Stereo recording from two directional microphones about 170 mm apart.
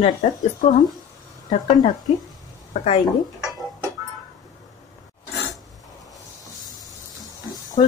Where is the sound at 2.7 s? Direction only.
45° left (ahead or behind).